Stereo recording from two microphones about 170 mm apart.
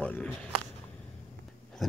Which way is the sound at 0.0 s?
5° left (ahead or behind).